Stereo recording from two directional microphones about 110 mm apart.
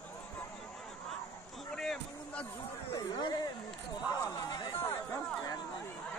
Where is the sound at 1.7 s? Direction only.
5° left (ahead or behind).